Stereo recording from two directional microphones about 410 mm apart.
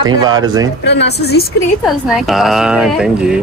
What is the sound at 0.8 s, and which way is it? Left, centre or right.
Speech, left.